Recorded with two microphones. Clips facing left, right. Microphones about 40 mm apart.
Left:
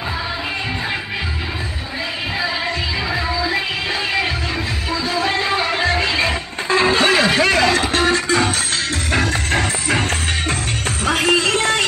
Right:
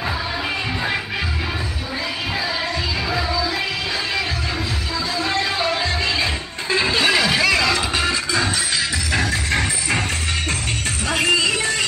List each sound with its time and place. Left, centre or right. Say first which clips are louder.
5.1 s music: left 3 dB; left
6.7 s music: left 3 dB; left
11.1 s music: left 2 dB; left